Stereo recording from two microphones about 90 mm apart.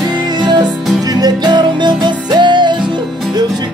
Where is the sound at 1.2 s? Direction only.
50° right (ahead or behind).